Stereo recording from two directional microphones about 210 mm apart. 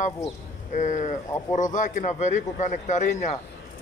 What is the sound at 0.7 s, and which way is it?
Speech, 35° left (ahead or behind).